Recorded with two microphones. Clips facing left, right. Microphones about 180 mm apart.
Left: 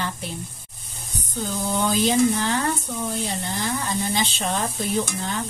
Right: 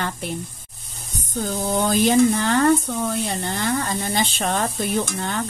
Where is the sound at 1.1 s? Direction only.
45° right (ahead or behind).